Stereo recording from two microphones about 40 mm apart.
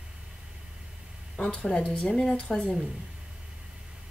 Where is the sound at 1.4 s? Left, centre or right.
Left.